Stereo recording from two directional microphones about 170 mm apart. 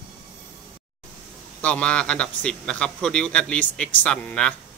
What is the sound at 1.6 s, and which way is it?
A man's voice, 5° left (ahead or behind).